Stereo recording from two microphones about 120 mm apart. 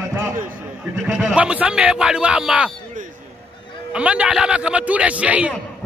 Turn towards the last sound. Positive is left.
turn(degrees=-10)  # may be behind; listen again after turning